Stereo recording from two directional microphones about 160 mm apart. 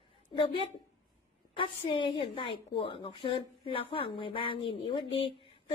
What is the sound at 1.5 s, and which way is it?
A woman's voice, 35° left (ahead or behind).